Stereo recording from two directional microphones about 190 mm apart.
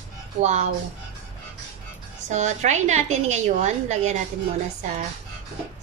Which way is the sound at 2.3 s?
40° right (ahead or behind).